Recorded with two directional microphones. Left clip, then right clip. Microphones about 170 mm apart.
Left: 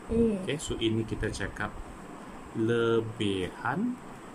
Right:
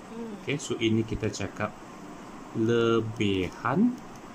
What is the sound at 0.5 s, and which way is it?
Speech, 10° right (ahead or behind).